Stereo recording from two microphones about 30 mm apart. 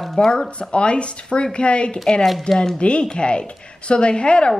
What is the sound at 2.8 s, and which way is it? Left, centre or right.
Speech, left.